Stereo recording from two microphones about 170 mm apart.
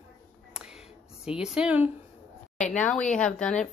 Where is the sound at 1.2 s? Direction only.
5° right (ahead or behind).